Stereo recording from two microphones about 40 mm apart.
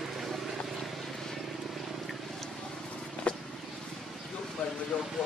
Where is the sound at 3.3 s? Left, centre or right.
Left.